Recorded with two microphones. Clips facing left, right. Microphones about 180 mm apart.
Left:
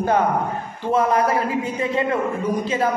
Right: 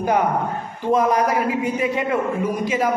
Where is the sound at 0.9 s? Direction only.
15° right (ahead or behind).